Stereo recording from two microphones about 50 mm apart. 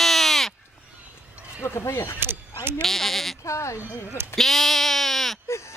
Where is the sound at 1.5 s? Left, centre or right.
Left.